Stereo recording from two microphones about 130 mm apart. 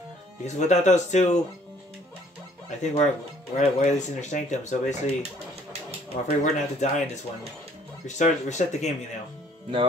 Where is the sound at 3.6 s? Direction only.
65° left (ahead or behind).